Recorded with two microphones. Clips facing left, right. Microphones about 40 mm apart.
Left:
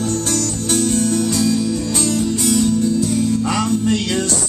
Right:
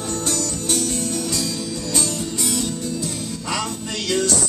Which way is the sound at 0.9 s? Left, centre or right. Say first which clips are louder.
Left 8 dB; left.